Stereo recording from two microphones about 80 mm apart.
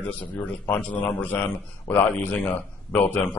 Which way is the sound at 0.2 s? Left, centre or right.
Left.